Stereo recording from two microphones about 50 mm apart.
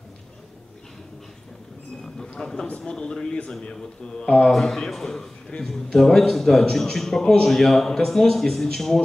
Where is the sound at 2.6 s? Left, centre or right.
Left.